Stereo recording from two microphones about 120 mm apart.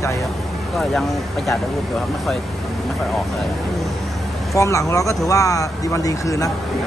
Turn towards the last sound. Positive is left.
turn(degrees=25)  # may be behind; listen again after turning